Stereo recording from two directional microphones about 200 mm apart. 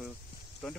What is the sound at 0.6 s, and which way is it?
Speech, centre (ahead or behind).